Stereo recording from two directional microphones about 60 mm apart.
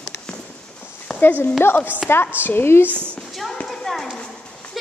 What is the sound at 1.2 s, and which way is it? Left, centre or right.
A woman's voice, left.